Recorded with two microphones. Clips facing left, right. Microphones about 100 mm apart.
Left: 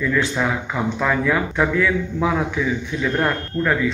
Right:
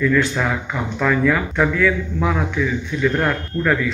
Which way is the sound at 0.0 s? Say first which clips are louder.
Right 2 dB; 10° left (ahead or behind).